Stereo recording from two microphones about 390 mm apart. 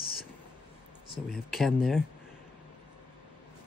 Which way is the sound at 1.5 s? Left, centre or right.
Centre.